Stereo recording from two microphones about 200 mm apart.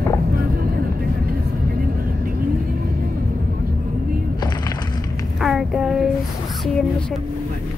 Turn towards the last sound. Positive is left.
turn(degrees=0)  # may be behind; listen again after turning